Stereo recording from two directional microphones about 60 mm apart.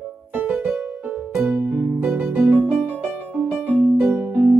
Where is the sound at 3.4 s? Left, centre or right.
Right.